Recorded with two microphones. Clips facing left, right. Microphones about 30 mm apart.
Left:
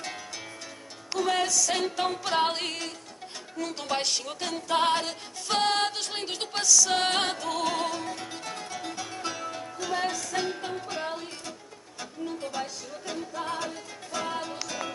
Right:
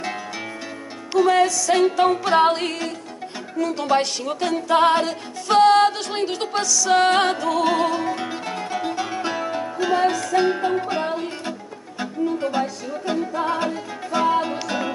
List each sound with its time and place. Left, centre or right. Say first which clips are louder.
1.2 s music: right 8 dB; centre
2.5 s music: right 8 dB; centre
7.6 s music: right 9 dB; right